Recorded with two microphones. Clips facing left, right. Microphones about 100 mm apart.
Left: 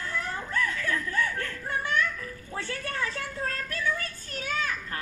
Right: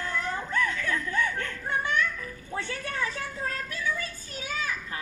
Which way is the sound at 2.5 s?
20° right (ahead or behind).